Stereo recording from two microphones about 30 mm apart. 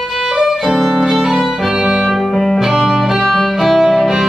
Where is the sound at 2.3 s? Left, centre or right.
Centre.